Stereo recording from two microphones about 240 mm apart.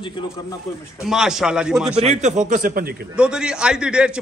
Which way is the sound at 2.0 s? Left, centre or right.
Right.